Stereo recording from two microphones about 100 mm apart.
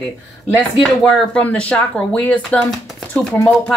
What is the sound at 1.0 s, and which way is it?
Speech, 10° left (ahead or behind).